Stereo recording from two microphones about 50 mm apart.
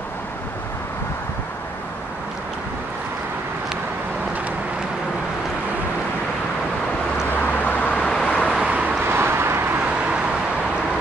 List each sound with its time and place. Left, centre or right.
7.6 s vehicle: left
8.4 s vehicle: centre
9.0 s vehicle: right